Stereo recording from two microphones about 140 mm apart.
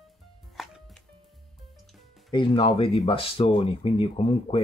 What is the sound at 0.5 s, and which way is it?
Chopping, centre (ahead or behind).